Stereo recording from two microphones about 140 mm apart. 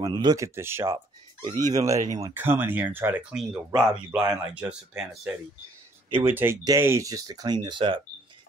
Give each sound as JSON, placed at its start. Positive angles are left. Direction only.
{"t": 0.0, "sound": "speech", "side_deg": -30}
{"t": 0.6, "sound": "speech", "side_deg": -15}